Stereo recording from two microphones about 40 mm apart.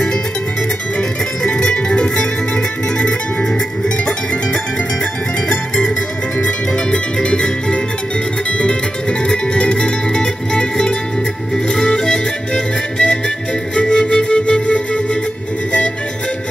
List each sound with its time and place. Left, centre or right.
1.4 s music: left
7.2 s music: centre
13.7 s flute: centre